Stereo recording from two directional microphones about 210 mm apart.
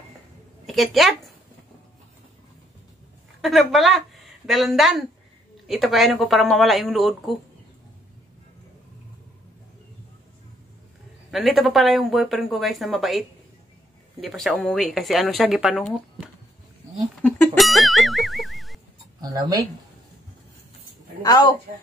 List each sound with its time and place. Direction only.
0.7 s speech: centre (ahead or behind)
3.3 s speech: centre (ahead or behind)
11.2 s speech: centre (ahead or behind)
14.2 s speech: centre (ahead or behind)
17.2 s music: 5° left (ahead or behind)
19.2 s speech: 15° right (ahead or behind)
21.2 s a woman's voice: 15° left (ahead or behind)